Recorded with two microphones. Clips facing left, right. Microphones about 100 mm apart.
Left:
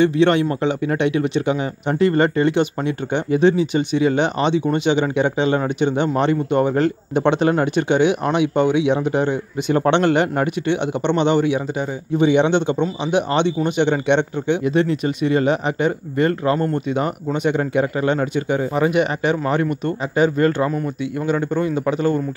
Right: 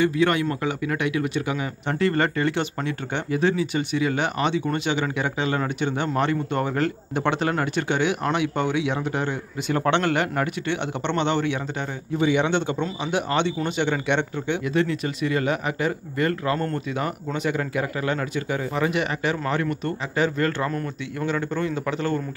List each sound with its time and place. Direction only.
0.0 s a man's voice: 25° left (ahead or behind)
20.7 s a man's voice: 10° left (ahead or behind)